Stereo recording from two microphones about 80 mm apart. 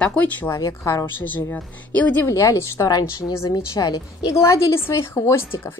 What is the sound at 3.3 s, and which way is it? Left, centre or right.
Speech, left.